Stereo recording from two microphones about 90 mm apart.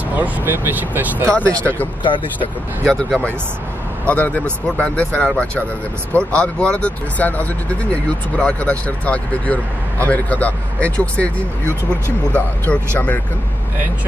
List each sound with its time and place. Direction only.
0.1 s speech: 20° right (ahead or behind)
1.6 s speech: 20° left (ahead or behind)
2.0 s speech: 65° left (ahead or behind)
2.8 s speech: 5° left (ahead or behind)
12.4 s speech: 15° left (ahead or behind)